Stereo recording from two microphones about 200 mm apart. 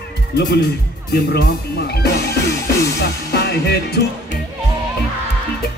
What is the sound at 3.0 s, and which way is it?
Music, 55° left (ahead or behind).